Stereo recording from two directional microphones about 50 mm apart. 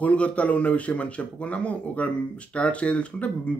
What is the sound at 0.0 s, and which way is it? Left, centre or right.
Speech, left.